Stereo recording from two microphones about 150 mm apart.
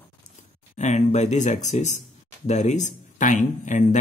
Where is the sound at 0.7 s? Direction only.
50° left (ahead or behind).